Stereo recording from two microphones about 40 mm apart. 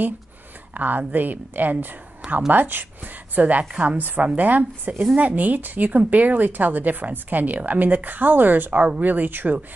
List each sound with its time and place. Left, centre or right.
0.7 s speech: right
3.3 s a woman's voice: right